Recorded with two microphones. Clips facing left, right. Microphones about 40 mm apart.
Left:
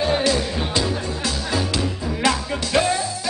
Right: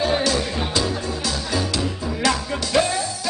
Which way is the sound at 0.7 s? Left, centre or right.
Centre.